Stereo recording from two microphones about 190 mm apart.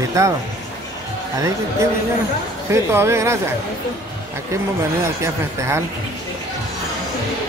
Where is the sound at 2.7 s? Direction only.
15° right (ahead or behind).